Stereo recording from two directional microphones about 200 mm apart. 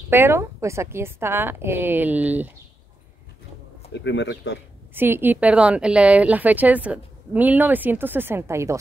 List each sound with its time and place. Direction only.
0.1 s speech: 10° right (ahead or behind)
3.9 s speech: 60° left (ahead or behind)
4.9 s speech: 10° right (ahead or behind)